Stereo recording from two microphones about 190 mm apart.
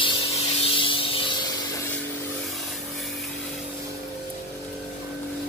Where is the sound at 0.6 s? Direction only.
30° left (ahead or behind).